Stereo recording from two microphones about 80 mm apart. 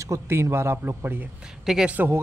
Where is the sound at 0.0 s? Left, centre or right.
Right.